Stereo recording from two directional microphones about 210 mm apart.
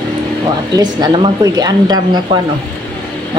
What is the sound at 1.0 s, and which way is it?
A woman's voice, 20° right (ahead or behind).